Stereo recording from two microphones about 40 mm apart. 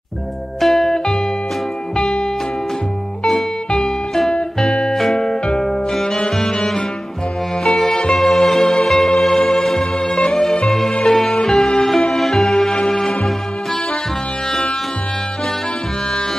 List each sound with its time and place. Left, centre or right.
0.6 s music: centre
0.9 s music: centre
3.3 s music: centre